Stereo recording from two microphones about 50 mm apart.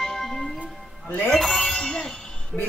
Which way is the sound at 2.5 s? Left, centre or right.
Centre.